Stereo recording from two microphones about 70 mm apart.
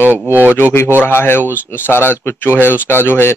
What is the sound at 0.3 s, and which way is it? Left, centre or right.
Speech, right.